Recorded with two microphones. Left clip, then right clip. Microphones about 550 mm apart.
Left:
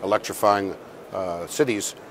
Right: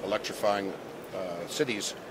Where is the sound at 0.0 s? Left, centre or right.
Left.